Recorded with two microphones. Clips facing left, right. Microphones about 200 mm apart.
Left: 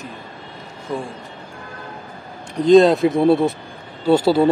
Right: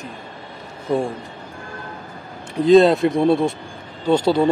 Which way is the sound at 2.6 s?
Centre (ahead or behind).